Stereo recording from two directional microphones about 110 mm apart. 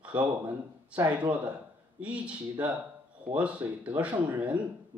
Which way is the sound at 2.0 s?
10° right (ahead or behind).